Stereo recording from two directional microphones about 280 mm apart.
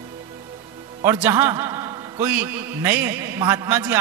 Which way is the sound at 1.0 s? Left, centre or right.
Centre.